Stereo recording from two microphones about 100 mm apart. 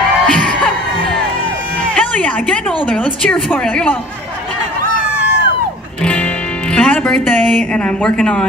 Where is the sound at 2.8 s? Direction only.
10° left (ahead or behind).